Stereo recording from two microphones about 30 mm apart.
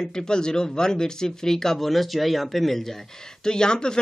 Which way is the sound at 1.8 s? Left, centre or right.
Centre.